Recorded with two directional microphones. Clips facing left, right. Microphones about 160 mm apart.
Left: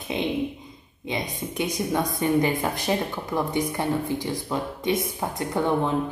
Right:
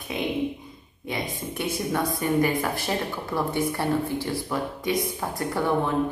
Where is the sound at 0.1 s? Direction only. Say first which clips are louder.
Even; 25° left (ahead or behind).